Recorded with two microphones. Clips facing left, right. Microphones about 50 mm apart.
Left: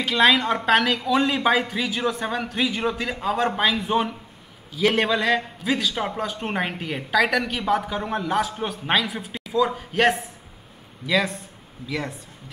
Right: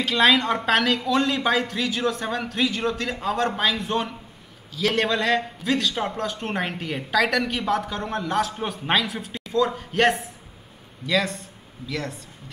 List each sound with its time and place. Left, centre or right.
0.0 s a man's voice: centre